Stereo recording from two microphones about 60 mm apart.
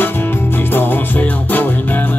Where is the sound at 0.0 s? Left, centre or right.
Left.